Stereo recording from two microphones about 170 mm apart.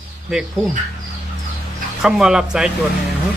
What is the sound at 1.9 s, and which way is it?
Speech, centre (ahead or behind).